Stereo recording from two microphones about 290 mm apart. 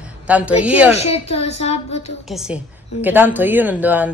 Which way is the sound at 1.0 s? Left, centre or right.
Left.